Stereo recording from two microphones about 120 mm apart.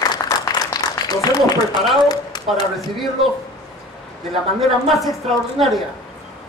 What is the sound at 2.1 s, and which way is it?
Speech, 35° left (ahead or behind).